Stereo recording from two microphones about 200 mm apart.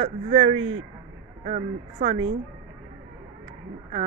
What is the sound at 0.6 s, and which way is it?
Speech, 90° right.